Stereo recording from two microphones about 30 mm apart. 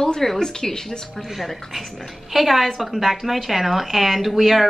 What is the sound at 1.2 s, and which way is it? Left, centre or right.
Speech, centre.